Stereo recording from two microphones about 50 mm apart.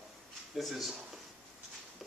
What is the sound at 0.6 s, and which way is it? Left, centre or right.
Speech, centre.